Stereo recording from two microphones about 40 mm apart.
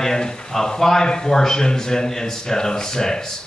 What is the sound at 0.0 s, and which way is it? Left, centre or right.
A man's voice, centre.